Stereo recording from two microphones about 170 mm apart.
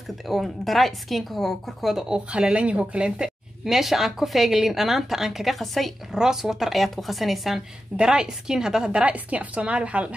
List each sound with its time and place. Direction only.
0.3 s a woman's voice: centre (ahead or behind)